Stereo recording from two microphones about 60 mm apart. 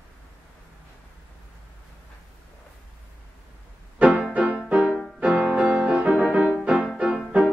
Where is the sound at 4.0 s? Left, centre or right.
Right.